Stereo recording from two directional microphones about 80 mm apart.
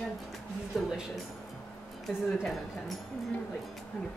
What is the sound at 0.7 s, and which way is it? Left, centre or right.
Speech, centre.